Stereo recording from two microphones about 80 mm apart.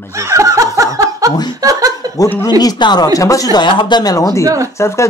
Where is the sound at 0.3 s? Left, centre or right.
Right.